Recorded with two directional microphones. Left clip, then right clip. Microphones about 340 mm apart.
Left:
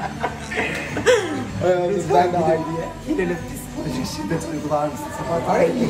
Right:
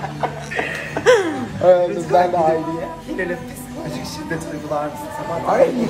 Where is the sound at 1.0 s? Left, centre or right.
Centre.